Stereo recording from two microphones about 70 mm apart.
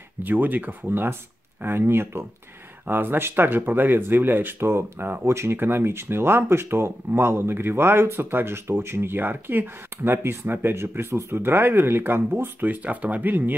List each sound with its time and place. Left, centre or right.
0.2 s speech: right